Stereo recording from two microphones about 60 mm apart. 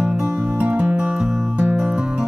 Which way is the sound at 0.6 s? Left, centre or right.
Centre.